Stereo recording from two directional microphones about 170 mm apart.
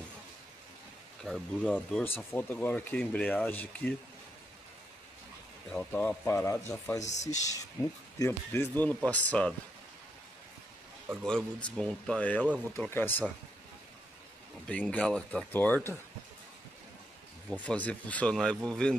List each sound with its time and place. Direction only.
1.2 s speech: 5° left (ahead or behind)
5.7 s speech: 10° left (ahead or behind)
7.0 s speech: 45° left (ahead or behind)
8.2 s speech: 15° left (ahead or behind)
11.1 s speech: 5° left (ahead or behind)
14.7 s speech: 5° left (ahead or behind)
17.6 s speech: 10° left (ahead or behind)